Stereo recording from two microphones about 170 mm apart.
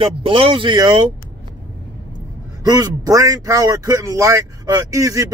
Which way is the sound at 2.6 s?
20° right (ahead or behind).